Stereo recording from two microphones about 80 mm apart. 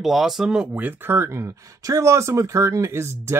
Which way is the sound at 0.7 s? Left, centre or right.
Right.